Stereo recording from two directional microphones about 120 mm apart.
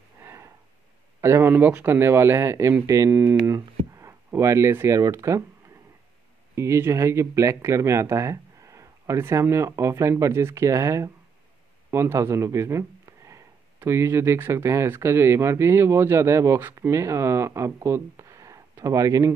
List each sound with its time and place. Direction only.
0.2 s a sound: 20° right (ahead or behind)
1.2 s speech: 20° right (ahead or behind)
6.5 s speech: 25° right (ahead or behind)